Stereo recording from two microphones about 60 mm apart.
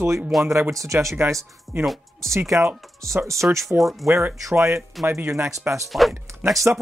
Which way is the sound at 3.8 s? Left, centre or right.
Centre.